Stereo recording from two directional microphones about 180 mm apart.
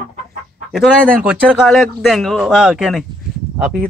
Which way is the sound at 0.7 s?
Centre (ahead or behind).